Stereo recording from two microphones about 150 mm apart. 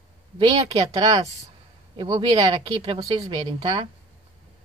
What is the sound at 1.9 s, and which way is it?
Speech, 30° right (ahead or behind).